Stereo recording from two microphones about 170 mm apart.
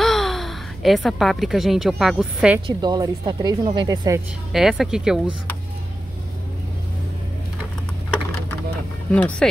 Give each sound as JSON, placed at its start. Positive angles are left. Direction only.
{"t": 0.0, "sound": "speech", "side_deg": 0}
{"t": 2.6, "sound": "speech", "side_deg": -25}
{"t": 4.5, "sound": "speech", "side_deg": 0}
{"t": 9.1, "sound": "speech", "side_deg": 5}